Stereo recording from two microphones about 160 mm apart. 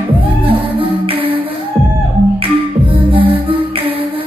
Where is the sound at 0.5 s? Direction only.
35° right (ahead or behind).